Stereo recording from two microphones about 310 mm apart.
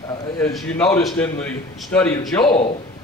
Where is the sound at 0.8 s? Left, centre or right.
Centre.